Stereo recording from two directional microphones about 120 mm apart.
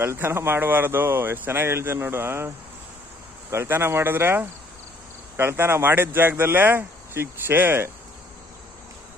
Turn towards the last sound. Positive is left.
turn(degrees=-20)  # may be behind; listen again after turning